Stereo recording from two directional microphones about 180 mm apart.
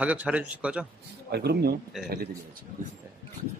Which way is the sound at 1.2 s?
65° right (ahead or behind).